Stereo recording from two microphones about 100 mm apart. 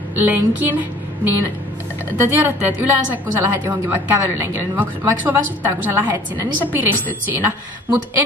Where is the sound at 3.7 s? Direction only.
20° right (ahead or behind).